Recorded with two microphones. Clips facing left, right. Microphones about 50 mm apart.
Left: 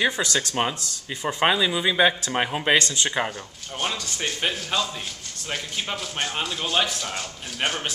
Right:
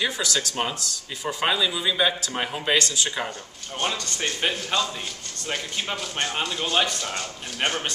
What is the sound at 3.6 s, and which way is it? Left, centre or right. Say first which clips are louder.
Speech: right 1 dB; centre.